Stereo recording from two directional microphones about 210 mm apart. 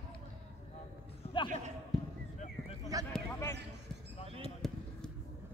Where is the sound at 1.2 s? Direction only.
25° left (ahead or behind).